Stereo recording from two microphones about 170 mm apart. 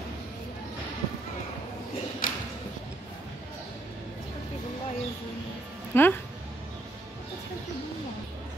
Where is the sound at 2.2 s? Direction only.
55° left (ahead or behind).